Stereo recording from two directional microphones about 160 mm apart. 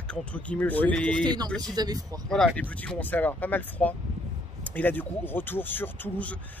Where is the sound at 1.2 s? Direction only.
25° right (ahead or behind).